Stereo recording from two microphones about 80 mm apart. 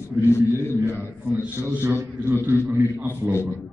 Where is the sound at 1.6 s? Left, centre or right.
Right.